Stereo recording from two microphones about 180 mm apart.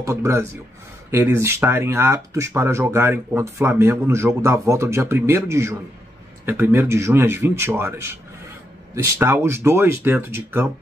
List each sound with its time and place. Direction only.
0.0 s speech: 15° right (ahead or behind)